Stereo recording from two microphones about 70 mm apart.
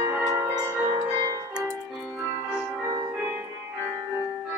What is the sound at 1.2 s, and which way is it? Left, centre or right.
Music, right.